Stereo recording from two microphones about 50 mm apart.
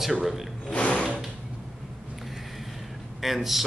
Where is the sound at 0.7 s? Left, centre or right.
Left.